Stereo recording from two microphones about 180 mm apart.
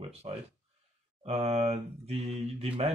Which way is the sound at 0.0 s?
35° right (ahead or behind).